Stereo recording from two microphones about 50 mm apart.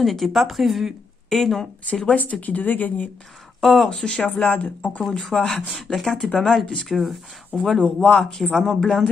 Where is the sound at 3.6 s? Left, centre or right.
Centre.